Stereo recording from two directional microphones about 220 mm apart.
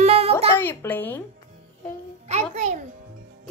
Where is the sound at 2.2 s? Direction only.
30° right (ahead or behind).